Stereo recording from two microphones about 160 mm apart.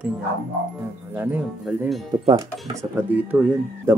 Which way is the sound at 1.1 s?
10° right (ahead or behind).